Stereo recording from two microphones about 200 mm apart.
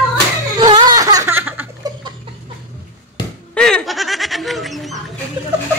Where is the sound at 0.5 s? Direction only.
20° right (ahead or behind).